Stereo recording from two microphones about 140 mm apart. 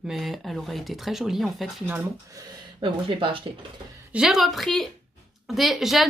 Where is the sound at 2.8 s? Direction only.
35° right (ahead or behind).